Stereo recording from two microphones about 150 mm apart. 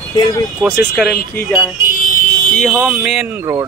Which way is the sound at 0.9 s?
Centre (ahead or behind).